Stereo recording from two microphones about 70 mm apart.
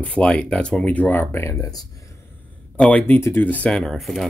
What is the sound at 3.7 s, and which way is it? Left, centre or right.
Speech, centre.